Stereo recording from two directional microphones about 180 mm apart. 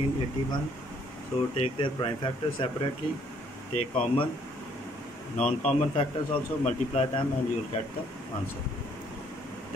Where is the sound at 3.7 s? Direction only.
35° left (ahead or behind).